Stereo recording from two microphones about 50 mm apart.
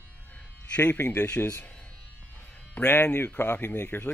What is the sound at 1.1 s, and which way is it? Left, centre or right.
Speech, left.